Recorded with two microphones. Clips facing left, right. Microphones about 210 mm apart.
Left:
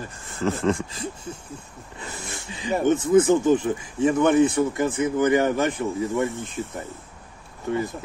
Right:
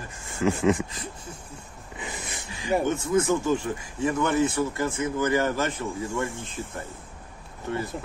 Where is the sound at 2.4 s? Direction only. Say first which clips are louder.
Left 3 dB; 20° left (ahead or behind).